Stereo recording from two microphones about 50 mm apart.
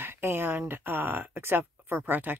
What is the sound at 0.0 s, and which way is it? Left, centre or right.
Speech, right.